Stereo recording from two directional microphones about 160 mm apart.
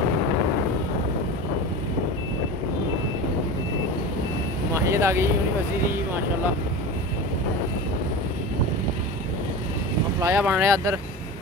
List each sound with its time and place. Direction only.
4.7 s speech: 20° right (ahead or behind)
10.2 s speech: 10° right (ahead or behind)